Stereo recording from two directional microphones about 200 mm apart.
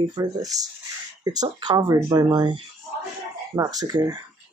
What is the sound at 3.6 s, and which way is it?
Speech, 20° right (ahead or behind).